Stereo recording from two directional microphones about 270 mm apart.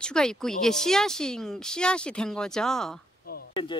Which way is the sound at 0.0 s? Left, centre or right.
Centre.